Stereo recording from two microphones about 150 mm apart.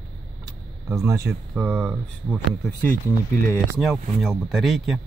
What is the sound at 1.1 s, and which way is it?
Speech, 20° right (ahead or behind).